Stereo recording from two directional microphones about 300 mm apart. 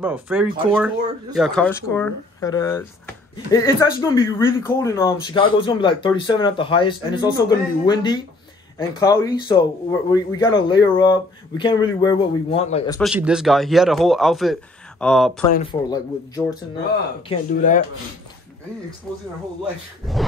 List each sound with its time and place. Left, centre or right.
0.0 s speech: centre
13.0 s speech: centre
15.5 s speech: centre
17.3 s speech: left